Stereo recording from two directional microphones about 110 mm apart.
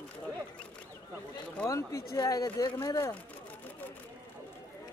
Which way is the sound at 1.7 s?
25° left (ahead or behind).